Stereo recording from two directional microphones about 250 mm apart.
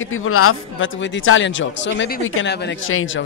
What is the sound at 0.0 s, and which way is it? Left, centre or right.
A man's voice, left.